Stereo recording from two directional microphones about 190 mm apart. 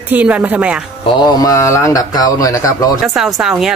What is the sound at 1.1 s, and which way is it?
Speech, 25° left (ahead or behind).